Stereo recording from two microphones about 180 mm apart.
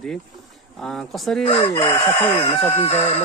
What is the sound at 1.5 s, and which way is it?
Chicken, 35° left (ahead or behind).